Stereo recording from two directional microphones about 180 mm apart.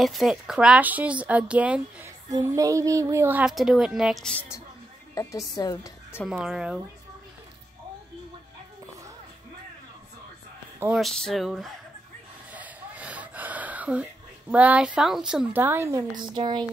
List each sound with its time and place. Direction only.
0.0 s a woman's voice: centre (ahead or behind)
2.3 s a woman's voice: 20° right (ahead or behind); by 4.4 s centre (ahead or behind)
5.1 s a woman's voice: 20° left (ahead or behind)
6.2 s speech: 5° right (ahead or behind)
11.0 s speech: centre (ahead or behind)
12.5 s gasp: 10° right (ahead or behind)
14.5 s a woman's voice: 5° right (ahead or behind)
16.2 s speech: 25° right (ahead or behind)